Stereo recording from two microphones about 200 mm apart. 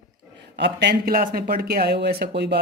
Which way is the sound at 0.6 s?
60° right (ahead or behind).